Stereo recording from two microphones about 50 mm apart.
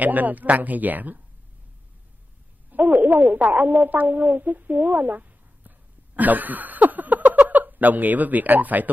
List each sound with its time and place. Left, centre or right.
0.0 s speech: right
2.7 s speech: right